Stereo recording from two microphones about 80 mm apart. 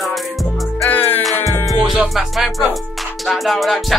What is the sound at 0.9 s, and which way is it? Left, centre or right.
Music, left.